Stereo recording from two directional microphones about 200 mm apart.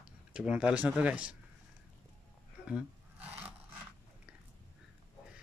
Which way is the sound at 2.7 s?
5° right (ahead or behind).